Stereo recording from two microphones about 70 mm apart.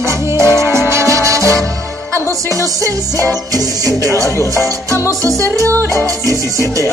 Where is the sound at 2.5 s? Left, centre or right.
Right.